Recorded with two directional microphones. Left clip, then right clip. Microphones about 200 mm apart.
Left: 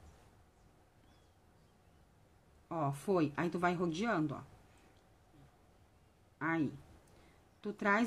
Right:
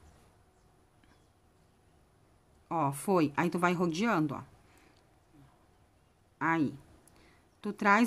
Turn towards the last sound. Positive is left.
turn(degrees=-20)  # may be behind; listen again after turning